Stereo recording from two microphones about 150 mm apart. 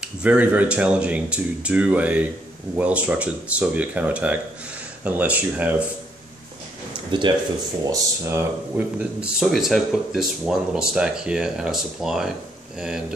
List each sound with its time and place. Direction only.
0.0 s speech: 10° right (ahead or behind)
7.1 s speech: 30° right (ahead or behind)
7.8 s speech: 20° right (ahead or behind); by 12.3 s 5° right (ahead or behind)